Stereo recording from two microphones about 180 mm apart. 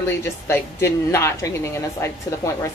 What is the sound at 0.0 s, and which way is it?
Speech, 15° left (ahead or behind).